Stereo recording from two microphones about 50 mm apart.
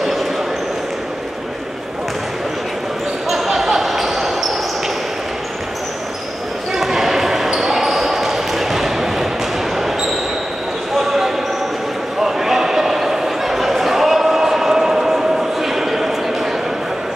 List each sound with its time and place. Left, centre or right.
3.3 s basketball bounce: centre
6.7 s basketball bounce: centre
11.0 s basketball bounce: centre
12.2 s a sound: centre